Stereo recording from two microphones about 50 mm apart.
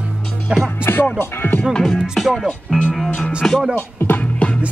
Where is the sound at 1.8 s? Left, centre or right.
Centre.